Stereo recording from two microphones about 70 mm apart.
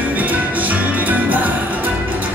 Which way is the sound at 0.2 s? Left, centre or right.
Right.